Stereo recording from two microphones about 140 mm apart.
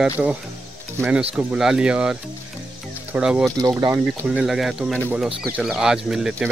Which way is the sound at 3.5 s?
25° right (ahead or behind).